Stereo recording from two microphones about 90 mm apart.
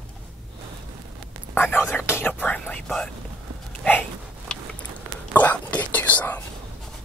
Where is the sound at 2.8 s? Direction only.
5° left (ahead or behind).